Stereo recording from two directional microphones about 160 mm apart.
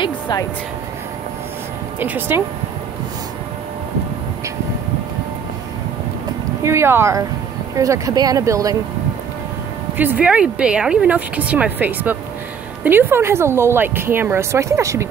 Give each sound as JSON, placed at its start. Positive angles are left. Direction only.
{"t": 0.0, "sound": "speech", "side_deg": 25}
{"t": 2.0, "sound": "a woman's voice", "side_deg": -10}
{"t": 6.6, "sound": "a woman's voice", "side_deg": -15}
{"t": 9.9, "sound": "a woman's voice", "side_deg": -10}